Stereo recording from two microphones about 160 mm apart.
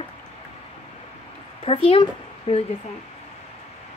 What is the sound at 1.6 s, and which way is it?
Speech, 35° left (ahead or behind).